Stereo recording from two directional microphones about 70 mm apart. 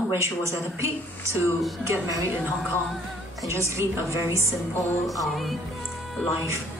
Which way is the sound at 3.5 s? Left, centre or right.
Right.